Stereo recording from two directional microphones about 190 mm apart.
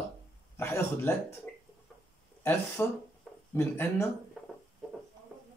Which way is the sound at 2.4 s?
15° left (ahead or behind).